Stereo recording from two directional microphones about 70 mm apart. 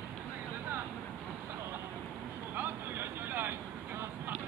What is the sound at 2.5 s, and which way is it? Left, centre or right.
Vehicle, right.